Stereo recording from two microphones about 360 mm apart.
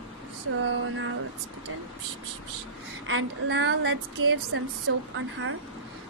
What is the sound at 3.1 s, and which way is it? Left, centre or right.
Speech, right.